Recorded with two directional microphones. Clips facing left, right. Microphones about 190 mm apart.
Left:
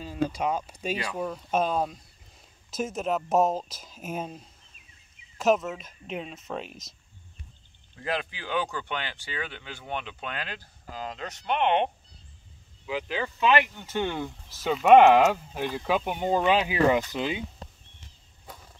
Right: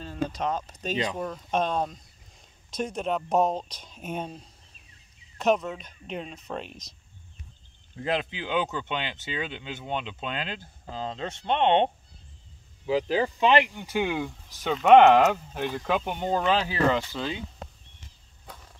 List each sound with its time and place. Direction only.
0.0 s speech: 10° left (ahead or behind)
5.4 s speech: centre (ahead or behind)
8.0 s speech: 20° right (ahead or behind)
13.7 s speech: 10° right (ahead or behind); by 17.4 s 15° left (ahead or behind)